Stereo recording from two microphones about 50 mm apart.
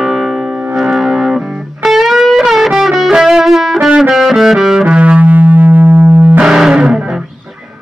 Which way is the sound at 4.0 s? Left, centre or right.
Centre.